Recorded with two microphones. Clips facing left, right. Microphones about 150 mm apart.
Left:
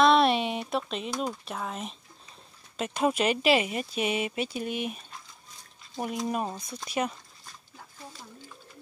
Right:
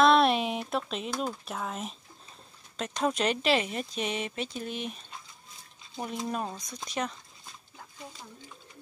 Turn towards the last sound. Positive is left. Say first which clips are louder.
# left 3 dB
turn(degrees=10)  # may be behind; listen again after turning